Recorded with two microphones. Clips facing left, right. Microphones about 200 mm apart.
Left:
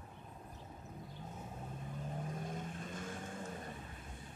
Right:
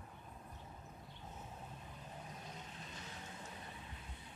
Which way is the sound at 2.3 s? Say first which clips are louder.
Left 9 dB; 50° left (ahead or behind).